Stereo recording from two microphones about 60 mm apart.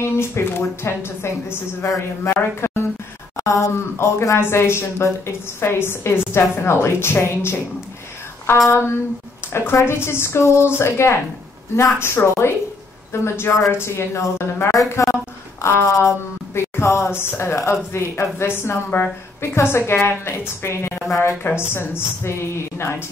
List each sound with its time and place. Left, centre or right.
0.0 s speech: left
3.3 s speech: left
8.6 s speech: left